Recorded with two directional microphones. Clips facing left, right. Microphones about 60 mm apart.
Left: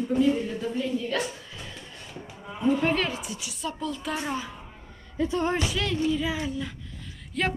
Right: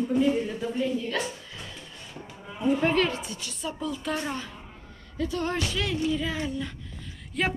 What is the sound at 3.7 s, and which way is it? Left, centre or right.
Speech, centre.